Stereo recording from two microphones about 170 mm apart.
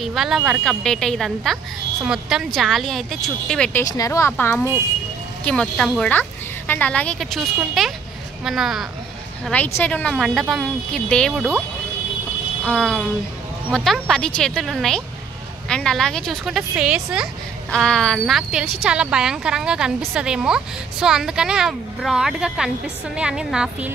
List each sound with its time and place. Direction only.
0.0 s a woman's voice: centre (ahead or behind)
3.8 s a woman's voice: 20° left (ahead or behind); by 8.8 s centre (ahead or behind)
9.8 s a woman's voice: 10° left (ahead or behind)
12.6 s a woman's voice: 5° left (ahead or behind)
17.6 s a woman's voice: 5° left (ahead or behind)